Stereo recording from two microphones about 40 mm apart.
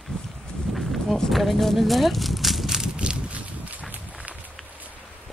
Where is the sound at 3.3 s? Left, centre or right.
Right.